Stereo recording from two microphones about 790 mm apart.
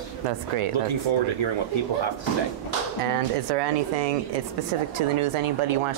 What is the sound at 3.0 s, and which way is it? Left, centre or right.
Speech, right.